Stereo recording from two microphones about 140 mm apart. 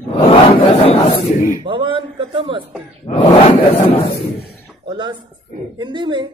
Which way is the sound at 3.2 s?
45° left (ahead or behind).